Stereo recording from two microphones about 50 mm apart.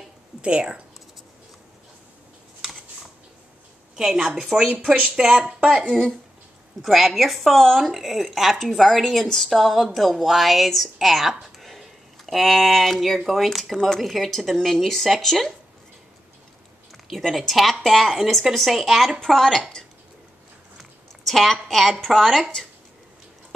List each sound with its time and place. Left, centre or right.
0.4 s speech: right
3.9 s a woman's voice: centre
5.9 s speech: centre
6.8 s speech: centre
16.9 s a woman's voice: centre
21.3 s speech: centre